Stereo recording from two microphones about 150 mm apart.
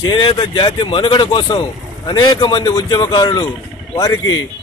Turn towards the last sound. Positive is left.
turn(degrees=25)  # may be behind; listen again after turning